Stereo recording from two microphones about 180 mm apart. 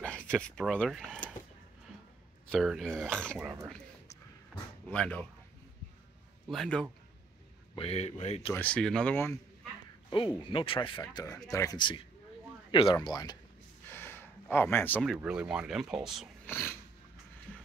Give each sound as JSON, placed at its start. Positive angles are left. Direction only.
{"t": 0.0, "sound": "speech", "side_deg": 5}
{"t": 2.5, "sound": "speech", "side_deg": -5}
{"t": 4.8, "sound": "speech", "side_deg": 5}
{"t": 6.5, "sound": "speech", "side_deg": 5}
{"t": 7.7, "sound": "speech", "side_deg": 35}
{"t": 8.5, "sound": "speech", "side_deg": 5}
{"t": 10.0, "sound": "speech", "side_deg": 25}
{"t": 13.9, "sound": "a sound", "side_deg": 10}
{"t": 15.0, "sound": "speech", "side_deg": -5}
{"t": 16.4, "sound": "a sound", "side_deg": 10}